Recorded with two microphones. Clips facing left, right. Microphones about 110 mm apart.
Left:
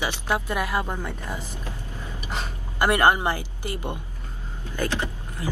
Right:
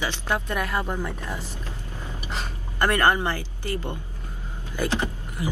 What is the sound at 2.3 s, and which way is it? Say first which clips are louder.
Gasp: left 2 dB; centre (ahead or behind).